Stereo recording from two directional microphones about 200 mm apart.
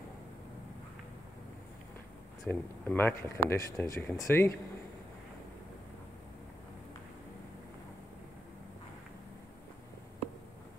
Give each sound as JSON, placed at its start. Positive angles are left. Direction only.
{"t": 2.4, "sound": "speech", "side_deg": 10}